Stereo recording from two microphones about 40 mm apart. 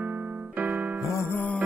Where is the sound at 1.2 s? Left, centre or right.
Left.